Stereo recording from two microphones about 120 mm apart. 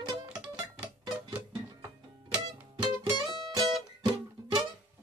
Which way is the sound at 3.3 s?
35° right (ahead or behind).